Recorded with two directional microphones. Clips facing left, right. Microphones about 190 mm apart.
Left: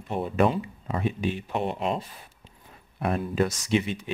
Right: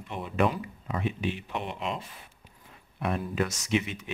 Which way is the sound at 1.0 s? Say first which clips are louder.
Left 3 dB; 40° left (ahead or behind).